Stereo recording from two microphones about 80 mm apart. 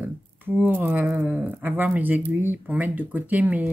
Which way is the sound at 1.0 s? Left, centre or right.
Centre.